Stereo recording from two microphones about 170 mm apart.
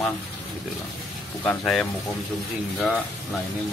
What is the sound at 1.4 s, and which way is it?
Speech, 5° left (ahead or behind).